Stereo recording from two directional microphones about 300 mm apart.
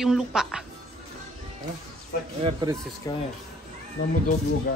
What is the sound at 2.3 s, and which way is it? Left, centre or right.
Speech, centre.